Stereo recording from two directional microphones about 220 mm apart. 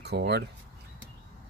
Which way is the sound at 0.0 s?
50° right (ahead or behind).